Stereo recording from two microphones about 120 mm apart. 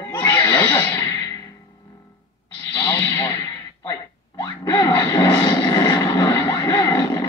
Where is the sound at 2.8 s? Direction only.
30° left (ahead or behind).